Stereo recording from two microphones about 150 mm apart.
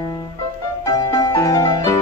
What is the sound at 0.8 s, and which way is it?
Music, 25° left (ahead or behind).